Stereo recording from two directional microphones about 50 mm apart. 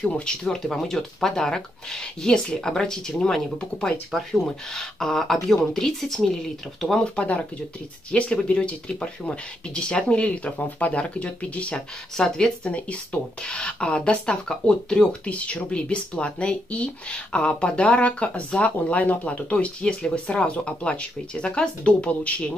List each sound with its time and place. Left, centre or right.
0.0 s speech: centre
0.6 s speech: centre
7.2 s speech: left
12.2 s speech: centre
12.6 s speech: left